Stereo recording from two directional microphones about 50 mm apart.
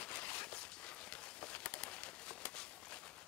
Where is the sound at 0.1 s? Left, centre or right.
Left.